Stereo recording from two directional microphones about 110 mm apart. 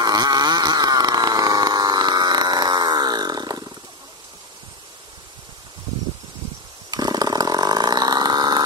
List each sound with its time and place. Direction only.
0.0 s chainsaw: 35° right (ahead or behind)
6.9 s chainsaw: 35° right (ahead or behind)